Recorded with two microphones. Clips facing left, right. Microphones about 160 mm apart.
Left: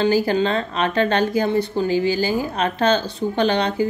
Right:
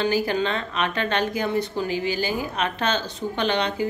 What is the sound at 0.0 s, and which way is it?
A woman's voice, 30° left (ahead or behind).